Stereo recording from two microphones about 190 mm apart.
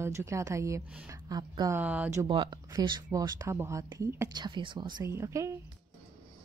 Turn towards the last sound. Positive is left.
turn(degrees=-15)  # may be behind; listen again after turning